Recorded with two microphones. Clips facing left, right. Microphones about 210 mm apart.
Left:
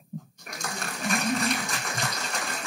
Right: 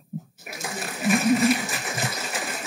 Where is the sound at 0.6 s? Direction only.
5° right (ahead or behind).